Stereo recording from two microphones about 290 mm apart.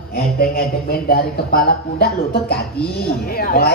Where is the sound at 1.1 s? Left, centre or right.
Left.